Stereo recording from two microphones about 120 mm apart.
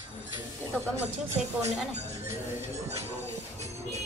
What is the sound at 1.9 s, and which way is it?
Music, 65° right (ahead or behind).